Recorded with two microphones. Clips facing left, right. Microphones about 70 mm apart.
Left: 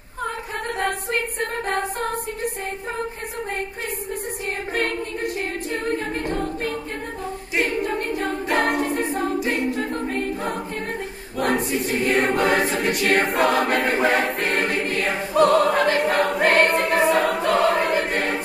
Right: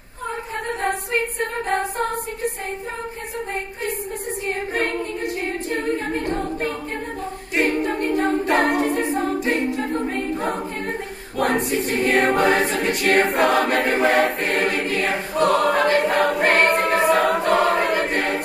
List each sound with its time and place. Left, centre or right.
1.1 s music: right
6.0 s a capella: right
7.5 s a capella: right
8.7 s singing: right
9.5 s a capella: right
9.9 s choir: right
10.3 s choir: right